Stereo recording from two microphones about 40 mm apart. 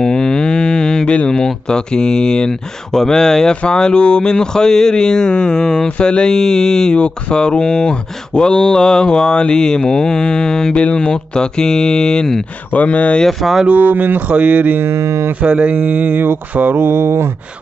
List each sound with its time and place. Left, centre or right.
0.0 s mantra: centre
1.0 s speech: left
10.7 s speech: left
12.7 s speech: left
13.3 s speech: centre
13.7 s speech: right
14.3 s speech: right
16.7 s a sound: right